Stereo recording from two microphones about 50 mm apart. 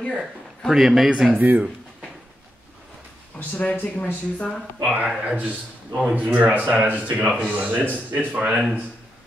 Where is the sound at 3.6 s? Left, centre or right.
Left.